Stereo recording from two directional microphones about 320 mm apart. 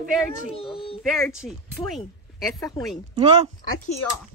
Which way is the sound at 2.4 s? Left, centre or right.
Centre.